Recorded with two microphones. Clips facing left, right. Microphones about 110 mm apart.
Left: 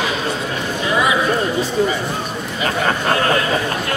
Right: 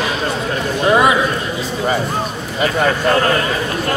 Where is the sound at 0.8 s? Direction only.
50° right (ahead or behind).